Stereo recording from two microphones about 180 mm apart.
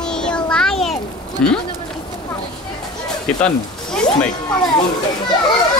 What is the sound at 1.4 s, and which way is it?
Speech, 5° left (ahead or behind).